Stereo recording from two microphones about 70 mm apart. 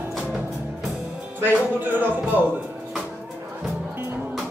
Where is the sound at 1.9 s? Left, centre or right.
Right.